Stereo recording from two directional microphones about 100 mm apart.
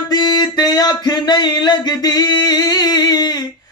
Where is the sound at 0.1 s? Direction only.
45° left (ahead or behind).